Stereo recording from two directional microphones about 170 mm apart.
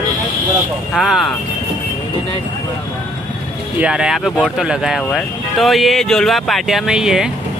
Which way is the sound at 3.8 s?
5° right (ahead or behind).